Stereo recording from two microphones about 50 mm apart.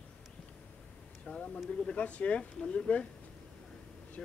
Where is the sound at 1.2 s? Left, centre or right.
Centre.